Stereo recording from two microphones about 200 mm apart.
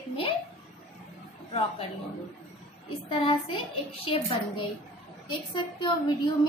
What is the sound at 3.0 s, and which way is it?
A woman's voice, 25° left (ahead or behind).